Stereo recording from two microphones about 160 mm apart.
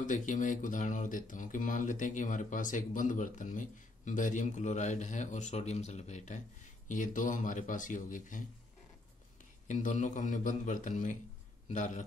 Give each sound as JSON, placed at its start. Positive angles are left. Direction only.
{"t": 0.0, "sound": "speech", "side_deg": 50}
{"t": 9.7, "sound": "speech", "side_deg": 50}